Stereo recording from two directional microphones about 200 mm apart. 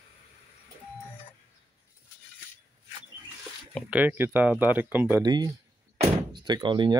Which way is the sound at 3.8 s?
5° right (ahead or behind).